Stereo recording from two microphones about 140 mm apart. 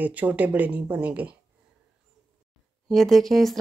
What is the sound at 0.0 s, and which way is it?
Speech, 10° right (ahead or behind).